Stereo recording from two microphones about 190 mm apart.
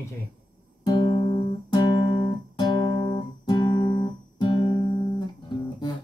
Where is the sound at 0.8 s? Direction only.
20° left (ahead or behind).